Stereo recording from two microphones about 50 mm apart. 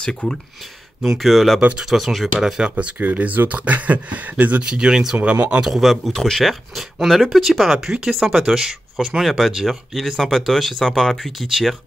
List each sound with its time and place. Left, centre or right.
0.0 s speech: centre
1.0 s speech: centre
1.6 s speech: right
1.9 s speech: centre
2.6 s speech: right
3.0 s speech: right
4.6 s speech: centre
5.1 s speech: right
5.6 s speech: centre
6.1 s speech: centre